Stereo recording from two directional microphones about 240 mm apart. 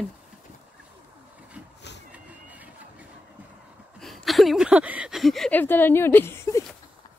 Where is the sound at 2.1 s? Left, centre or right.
Centre.